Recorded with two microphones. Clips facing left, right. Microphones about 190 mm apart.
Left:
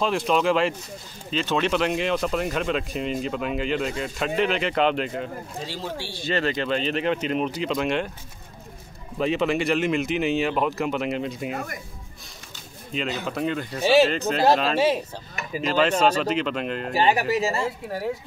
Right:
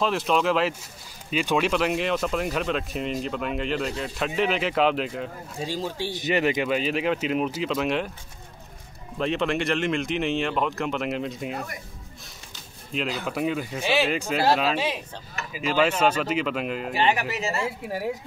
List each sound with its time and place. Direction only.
0.0 s speech: centre (ahead or behind)
5.7 s speech: 15° right (ahead or behind)
9.2 s speech: 5° left (ahead or behind)
11.5 s speech: 50° left (ahead or behind)
12.9 s speech: centre (ahead or behind)
13.8 s speech: 40° left (ahead or behind)
14.1 s speech: 10° right (ahead or behind)
16.9 s speech: 35° left (ahead or behind)